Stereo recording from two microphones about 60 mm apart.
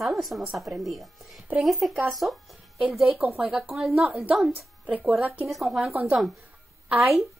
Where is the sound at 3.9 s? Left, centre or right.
Right.